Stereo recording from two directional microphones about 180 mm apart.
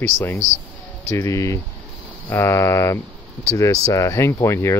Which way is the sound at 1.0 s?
15° left (ahead or behind).